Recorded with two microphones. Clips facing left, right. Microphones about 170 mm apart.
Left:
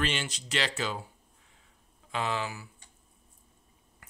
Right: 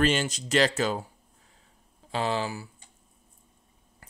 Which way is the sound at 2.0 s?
35° right (ahead or behind).